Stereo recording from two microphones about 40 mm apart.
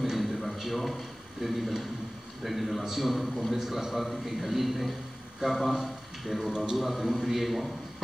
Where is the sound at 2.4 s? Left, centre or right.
Centre.